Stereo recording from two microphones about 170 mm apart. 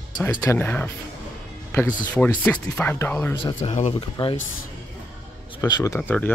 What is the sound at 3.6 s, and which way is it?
Speech, 40° left (ahead or behind).